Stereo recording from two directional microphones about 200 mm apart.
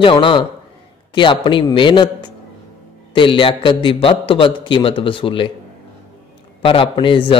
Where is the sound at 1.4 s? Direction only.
25° left (ahead or behind).